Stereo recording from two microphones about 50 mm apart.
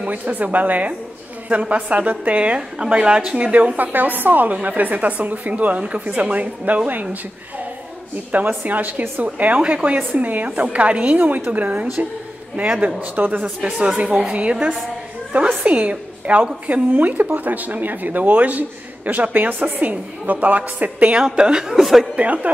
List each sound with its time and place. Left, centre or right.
0.0 s a man's voice: right
3.7 s a man's voice: right
10.1 s a woman's voice: right
13.9 s a woman's voice: right
21.2 s speech: centre
22.1 s a woman's voice: right